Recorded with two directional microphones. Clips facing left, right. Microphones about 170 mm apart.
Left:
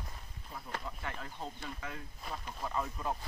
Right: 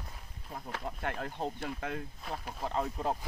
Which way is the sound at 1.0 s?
60° right (ahead or behind).